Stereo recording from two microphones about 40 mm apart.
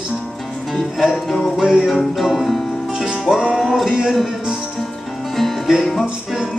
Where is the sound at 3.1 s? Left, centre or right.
Centre.